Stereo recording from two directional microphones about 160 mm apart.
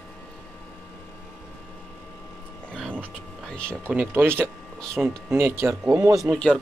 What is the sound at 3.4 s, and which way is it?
Speech, 5° left (ahead or behind).